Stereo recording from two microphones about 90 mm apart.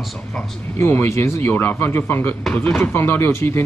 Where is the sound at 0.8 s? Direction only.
25° left (ahead or behind).